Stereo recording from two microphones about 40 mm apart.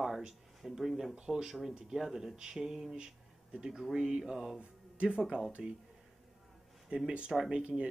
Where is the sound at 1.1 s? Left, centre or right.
Centre.